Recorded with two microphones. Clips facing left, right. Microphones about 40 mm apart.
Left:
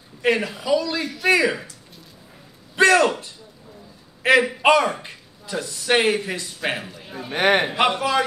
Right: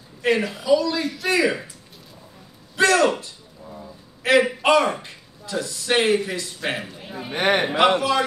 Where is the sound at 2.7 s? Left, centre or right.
Left.